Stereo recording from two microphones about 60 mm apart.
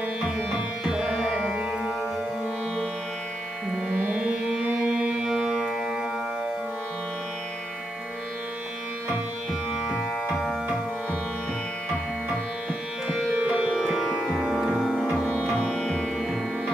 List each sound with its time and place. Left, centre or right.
0.9 s music: centre
4.2 s music: centre
9.8 s music: centre
13.3 s music: right
13.7 s music: centre
16.2 s music: centre